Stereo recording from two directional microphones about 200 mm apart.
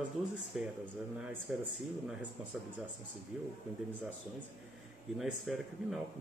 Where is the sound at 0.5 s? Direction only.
5° right (ahead or behind).